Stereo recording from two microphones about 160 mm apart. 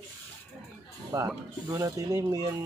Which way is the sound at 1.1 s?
20° right (ahead or behind).